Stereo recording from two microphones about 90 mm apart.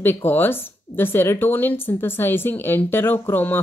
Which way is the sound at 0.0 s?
25° left (ahead or behind).